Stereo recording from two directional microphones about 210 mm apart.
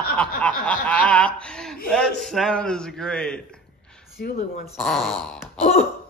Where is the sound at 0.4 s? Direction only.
5° left (ahead or behind).